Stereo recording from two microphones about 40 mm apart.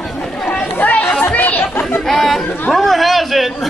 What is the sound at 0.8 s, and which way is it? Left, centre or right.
Chatter, left.